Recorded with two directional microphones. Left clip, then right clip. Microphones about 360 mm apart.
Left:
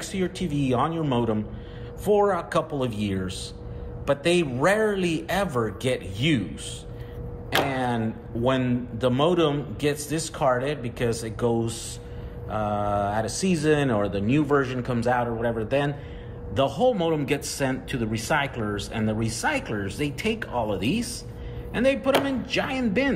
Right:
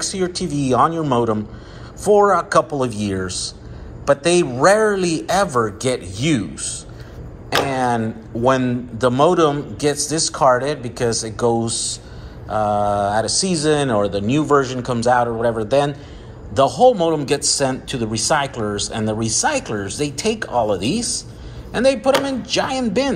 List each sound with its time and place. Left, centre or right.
0.0 s a man's voice: centre
10.6 s speech: right
11.0 s a man's voice: centre